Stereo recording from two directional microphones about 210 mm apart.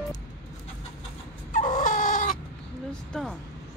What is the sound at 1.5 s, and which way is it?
Dog, 40° left (ahead or behind).